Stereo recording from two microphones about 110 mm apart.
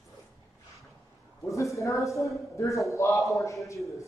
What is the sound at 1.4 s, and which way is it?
A man's voice, 30° left (ahead or behind).